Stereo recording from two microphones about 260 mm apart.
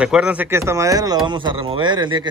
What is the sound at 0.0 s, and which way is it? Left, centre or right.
A man's voice, centre.